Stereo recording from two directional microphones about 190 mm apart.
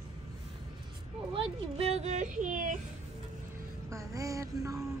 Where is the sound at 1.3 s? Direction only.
30° right (ahead or behind).